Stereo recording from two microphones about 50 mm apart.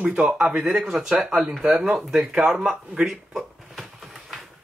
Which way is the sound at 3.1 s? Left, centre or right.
Centre.